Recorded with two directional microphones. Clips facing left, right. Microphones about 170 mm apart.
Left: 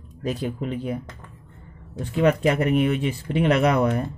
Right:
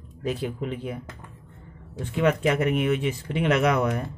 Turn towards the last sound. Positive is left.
turn(degrees=35)  # may be behind; listen again after turning